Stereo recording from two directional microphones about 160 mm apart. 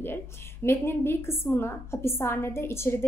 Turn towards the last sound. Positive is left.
turn(degrees=15)  # may be behind; listen again after turning